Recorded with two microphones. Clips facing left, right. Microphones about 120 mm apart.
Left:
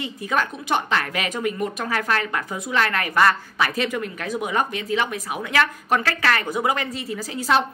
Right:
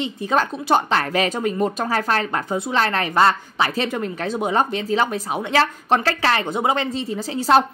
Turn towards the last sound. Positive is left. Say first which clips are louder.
# right 4 dB
turn(degrees=-25)  # may be behind; listen again after turning